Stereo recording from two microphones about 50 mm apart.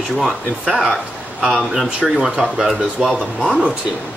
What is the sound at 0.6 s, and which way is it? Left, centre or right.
Speech, centre.